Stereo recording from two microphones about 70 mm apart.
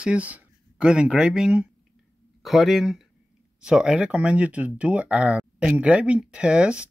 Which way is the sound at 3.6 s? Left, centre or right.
Centre.